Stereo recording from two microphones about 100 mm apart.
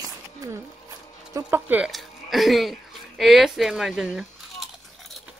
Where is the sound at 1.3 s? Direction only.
30° right (ahead or behind).